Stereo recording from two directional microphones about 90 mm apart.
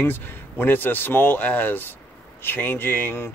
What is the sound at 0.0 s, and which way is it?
Speech, 25° left (ahead or behind).